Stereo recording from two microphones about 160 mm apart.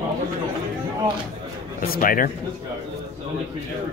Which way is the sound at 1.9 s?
60° left (ahead or behind).